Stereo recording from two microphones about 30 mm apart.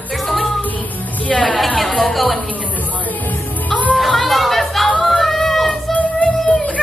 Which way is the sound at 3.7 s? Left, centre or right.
Left.